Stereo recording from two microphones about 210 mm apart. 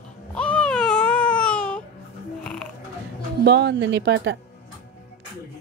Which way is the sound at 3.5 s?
55° right (ahead or behind).